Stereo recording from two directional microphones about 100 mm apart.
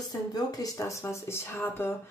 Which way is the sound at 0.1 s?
40° left (ahead or behind).